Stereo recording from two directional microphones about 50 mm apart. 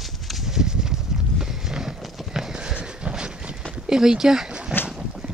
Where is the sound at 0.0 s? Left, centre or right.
Centre.